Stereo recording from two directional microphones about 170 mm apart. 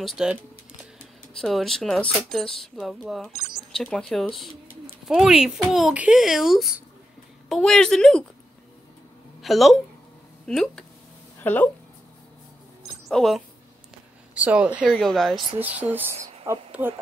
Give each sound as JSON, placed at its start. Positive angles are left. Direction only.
{"t": 0.0, "sound": "speech", "side_deg": 0}
{"t": 1.4, "sound": "speech", "side_deg": 0}
{"t": 9.4, "sound": "a woman's voice", "side_deg": 0}
{"t": 13.1, "sound": "speech", "side_deg": 0}
{"t": 15.6, "sound": "speech", "side_deg": -10}
{"t": 16.2, "sound": "a sound", "side_deg": -40}